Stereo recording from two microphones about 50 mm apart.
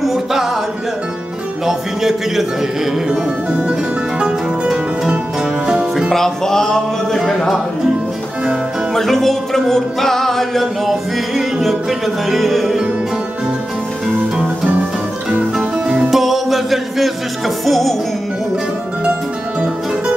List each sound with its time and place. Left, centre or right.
0.0 s music: centre
1.7 s a man's voice: centre
5.4 s music: centre
6.1 s a sound: centre
7.2 s speech: centre
8.9 s music: centre
14.0 s music: centre
16.1 s music: centre
17.6 s speech: centre